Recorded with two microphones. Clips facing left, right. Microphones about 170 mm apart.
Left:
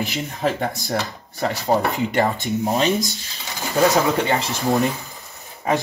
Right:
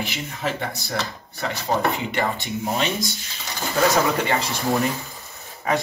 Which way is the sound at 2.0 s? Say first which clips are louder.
Left 5 dB; 40° left (ahead or behind).